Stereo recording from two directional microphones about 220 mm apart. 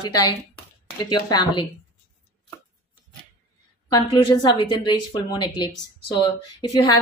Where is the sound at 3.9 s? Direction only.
20° left (ahead or behind).